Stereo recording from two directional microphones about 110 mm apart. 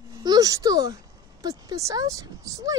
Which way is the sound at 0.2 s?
35° right (ahead or behind).